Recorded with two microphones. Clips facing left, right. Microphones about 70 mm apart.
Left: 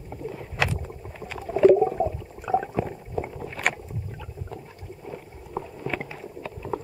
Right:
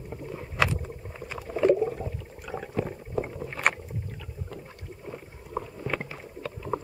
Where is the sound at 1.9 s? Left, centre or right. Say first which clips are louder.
Left 9 dB; left.